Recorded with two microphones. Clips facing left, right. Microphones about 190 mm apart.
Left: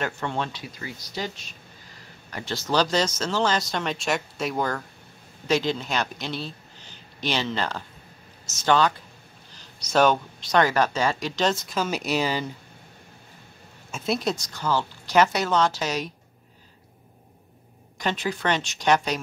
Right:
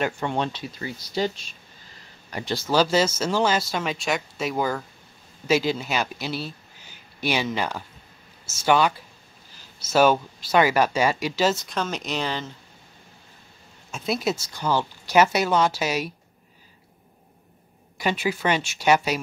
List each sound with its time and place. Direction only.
0.0 s speech: 15° right (ahead or behind); by 1.4 s 30° right (ahead or behind)
2.3 s speech: 15° right (ahead or behind); by 12.5 s 10° left (ahead or behind)
13.9 s speech: centre (ahead or behind)
17.9 s speech: 10° right (ahead or behind)